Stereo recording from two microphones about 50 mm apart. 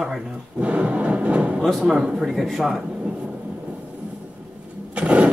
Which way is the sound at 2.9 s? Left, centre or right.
Centre.